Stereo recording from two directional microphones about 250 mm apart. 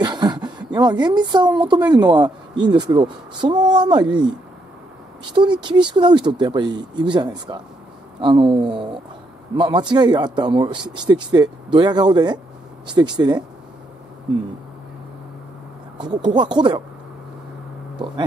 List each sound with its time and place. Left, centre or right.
0.0 s a sound: centre
1.8 s speech: centre
16.0 s speech: centre
17.9 s speech: centre